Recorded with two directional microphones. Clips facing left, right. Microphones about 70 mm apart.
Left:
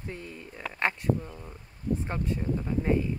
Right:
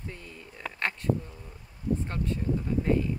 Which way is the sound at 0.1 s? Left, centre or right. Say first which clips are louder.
Left 4 dB; left.